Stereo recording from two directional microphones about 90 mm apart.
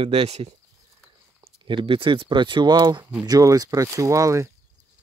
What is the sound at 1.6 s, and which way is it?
Speech, 70° right (ahead or behind).